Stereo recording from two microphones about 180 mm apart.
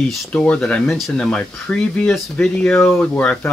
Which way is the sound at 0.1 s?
5° left (ahead or behind).